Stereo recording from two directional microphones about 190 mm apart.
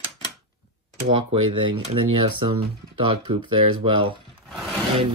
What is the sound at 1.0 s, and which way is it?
Speech, 25° right (ahead or behind).